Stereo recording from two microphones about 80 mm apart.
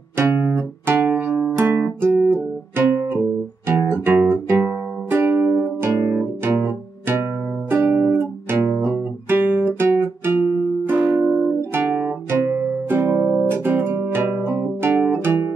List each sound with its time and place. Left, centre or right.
0.2 s music: right
15.2 s guitar: right